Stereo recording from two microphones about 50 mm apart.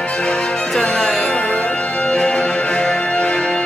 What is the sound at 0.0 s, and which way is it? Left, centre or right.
Music, left.